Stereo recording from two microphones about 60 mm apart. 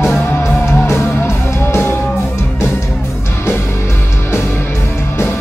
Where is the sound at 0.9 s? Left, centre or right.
Left.